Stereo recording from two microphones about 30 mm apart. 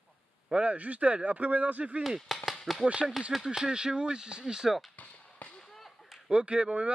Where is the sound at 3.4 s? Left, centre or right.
Right.